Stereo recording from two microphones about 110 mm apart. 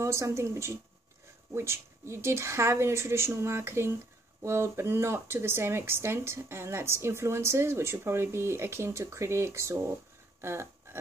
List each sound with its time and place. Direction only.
0.0 s speech: 25° right (ahead or behind)
10.4 s dog: 25° right (ahead or behind)